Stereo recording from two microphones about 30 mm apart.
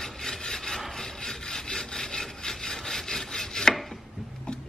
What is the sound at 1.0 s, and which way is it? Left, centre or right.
Sawing, centre.